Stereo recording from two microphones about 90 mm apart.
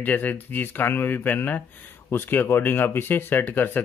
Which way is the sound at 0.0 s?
20° left (ahead or behind).